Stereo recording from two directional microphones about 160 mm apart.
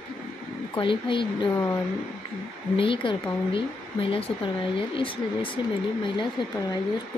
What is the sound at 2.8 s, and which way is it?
Speech, 30° left (ahead or behind).